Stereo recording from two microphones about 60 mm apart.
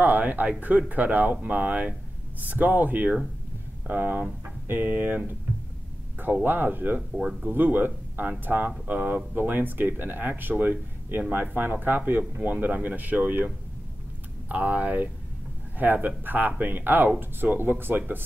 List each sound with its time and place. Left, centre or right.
0.0 s speech: right
6.4 s speech: right
7.2 s speech: centre
7.4 s speech: right
14.5 s speech: right